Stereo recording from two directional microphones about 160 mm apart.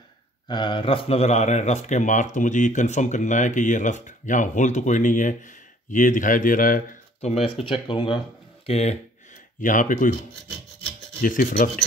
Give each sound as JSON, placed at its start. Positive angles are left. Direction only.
{"t": 0.5, "sound": "speech", "side_deg": 30}
{"t": 7.2, "sound": "speech", "side_deg": 40}
{"t": 8.6, "sound": "speech", "side_deg": 40}
{"t": 9.6, "sound": "speech", "side_deg": 55}
{"t": 11.1, "sound": "speech", "side_deg": 60}